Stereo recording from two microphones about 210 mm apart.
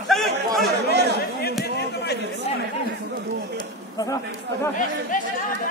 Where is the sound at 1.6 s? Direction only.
50° left (ahead or behind).